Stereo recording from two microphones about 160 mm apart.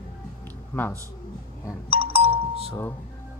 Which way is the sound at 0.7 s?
10° left (ahead or behind).